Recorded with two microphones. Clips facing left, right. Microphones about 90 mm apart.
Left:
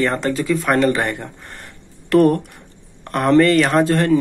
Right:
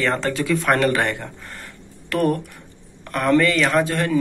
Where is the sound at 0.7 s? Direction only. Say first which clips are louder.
Left 2 dB; 10° left (ahead or behind).